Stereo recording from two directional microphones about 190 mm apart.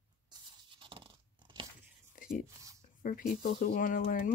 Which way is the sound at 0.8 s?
25° right (ahead or behind).